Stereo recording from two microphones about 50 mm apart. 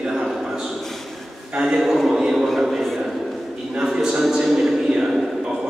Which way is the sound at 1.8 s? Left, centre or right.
Centre.